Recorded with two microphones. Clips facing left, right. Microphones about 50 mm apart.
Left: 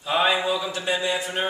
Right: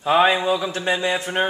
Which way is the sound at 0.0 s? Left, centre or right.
Right.